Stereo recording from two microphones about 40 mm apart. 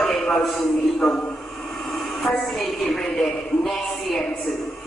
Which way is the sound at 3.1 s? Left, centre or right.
Centre.